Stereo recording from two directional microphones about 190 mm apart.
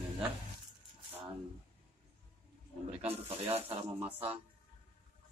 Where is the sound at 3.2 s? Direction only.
30° right (ahead or behind).